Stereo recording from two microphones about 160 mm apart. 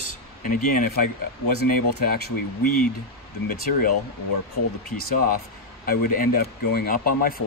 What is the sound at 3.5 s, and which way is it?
Speech, 60° left (ahead or behind).